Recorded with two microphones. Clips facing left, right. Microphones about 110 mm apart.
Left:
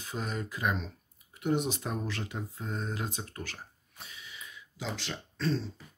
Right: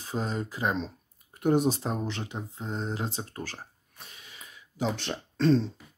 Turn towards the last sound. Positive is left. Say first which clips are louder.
# right 9 dB
turn(degrees=-60)  # may be behind; listen again after turning